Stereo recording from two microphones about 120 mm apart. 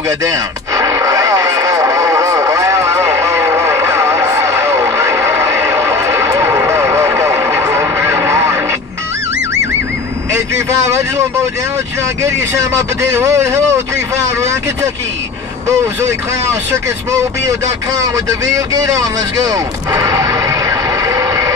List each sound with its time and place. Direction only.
0.2 s radio: 25° right (ahead or behind)
10.3 s vehicle: 25° right (ahead or behind)
12.2 s a man's voice: 25° right (ahead or behind)
16.7 s a man's voice: 25° right (ahead or behind)